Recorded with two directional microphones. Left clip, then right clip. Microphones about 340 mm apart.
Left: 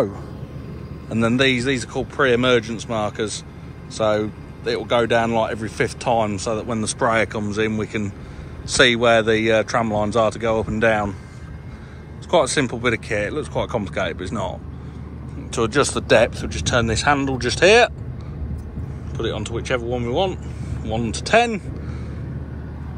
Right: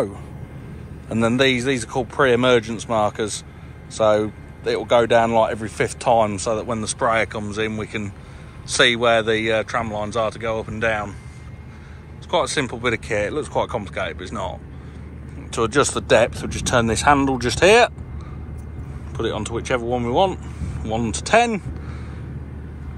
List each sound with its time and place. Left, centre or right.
1.0 s speech: centre
12.3 s speech: centre
19.1 s speech: centre